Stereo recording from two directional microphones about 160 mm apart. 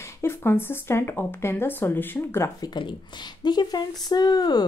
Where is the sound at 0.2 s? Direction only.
15° left (ahead or behind).